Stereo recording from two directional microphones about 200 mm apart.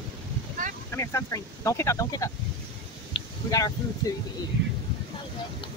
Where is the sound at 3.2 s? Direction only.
20° left (ahead or behind).